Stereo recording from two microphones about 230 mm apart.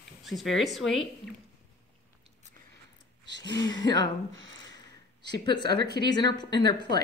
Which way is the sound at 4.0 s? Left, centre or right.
Right.